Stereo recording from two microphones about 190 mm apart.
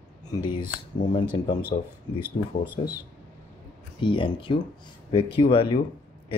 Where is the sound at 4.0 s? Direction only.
25° left (ahead or behind).